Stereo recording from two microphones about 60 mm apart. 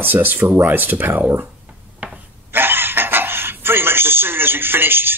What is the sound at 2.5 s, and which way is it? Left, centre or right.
Speech, right.